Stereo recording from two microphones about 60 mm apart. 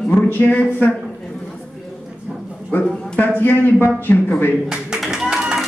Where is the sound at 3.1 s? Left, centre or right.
Left.